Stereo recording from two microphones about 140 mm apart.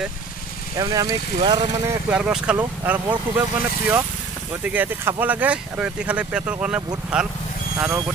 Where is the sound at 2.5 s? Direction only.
15° right (ahead or behind).